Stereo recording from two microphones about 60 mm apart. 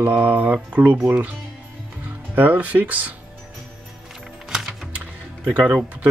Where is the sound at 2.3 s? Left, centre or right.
Right.